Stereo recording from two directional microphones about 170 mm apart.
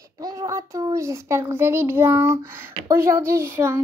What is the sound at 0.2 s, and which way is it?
A child's voice, 20° right (ahead or behind).